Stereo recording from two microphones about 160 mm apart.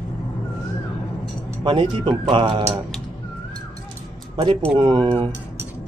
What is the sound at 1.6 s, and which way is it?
Speech, 30° right (ahead or behind).